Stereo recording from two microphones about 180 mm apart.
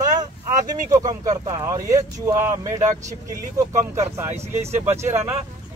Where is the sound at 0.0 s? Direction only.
20° right (ahead or behind).